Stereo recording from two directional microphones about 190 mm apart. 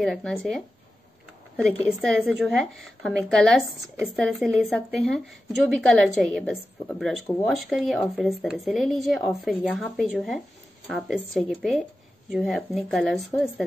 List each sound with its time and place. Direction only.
0.0 s a woman's voice: centre (ahead or behind)